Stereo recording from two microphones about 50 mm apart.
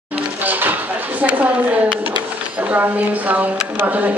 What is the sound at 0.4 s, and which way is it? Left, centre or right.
Speech, right.